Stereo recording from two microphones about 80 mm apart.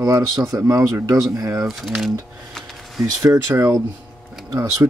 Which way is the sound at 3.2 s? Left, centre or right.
Right.